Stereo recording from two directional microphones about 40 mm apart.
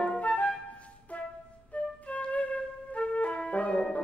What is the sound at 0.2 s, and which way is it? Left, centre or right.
Music, left.